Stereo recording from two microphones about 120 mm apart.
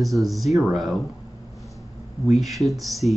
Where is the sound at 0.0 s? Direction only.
Centre (ahead or behind).